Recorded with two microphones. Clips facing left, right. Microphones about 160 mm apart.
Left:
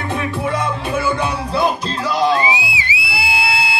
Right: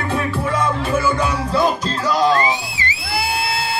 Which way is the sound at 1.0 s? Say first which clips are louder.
Right 1 dB; 15° left (ahead or behind).